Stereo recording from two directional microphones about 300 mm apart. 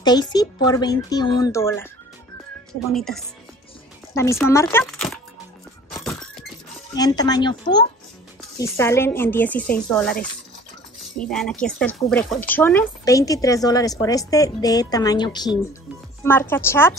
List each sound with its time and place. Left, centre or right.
0.0 s speech: centre
2.9 s speech: centre
5.9 s music: centre
6.9 s speech: centre
11.2 s speech: centre